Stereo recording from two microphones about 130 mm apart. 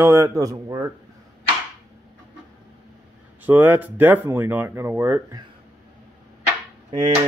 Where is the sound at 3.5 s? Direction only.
15° right (ahead or behind).